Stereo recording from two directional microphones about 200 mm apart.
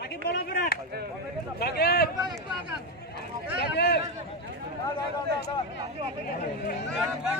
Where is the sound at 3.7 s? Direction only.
55° left (ahead or behind).